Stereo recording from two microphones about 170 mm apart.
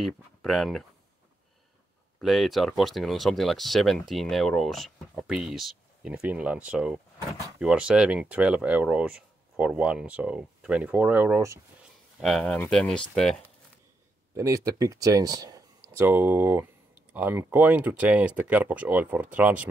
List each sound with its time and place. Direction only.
0.0 s speech: centre (ahead or behind)
2.1 s speech: centre (ahead or behind); by 11.6 s 15° right (ahead or behind)
12.2 s speech: centre (ahead or behind)
14.3 s speech: 20° right (ahead or behind)
16.1 s speech: 10° right (ahead or behind)